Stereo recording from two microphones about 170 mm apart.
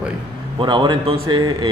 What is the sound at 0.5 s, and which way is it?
A man's voice, 25° right (ahead or behind).